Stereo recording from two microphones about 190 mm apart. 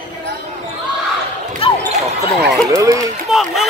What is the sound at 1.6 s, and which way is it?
Basketball bounce, 30° left (ahead or behind).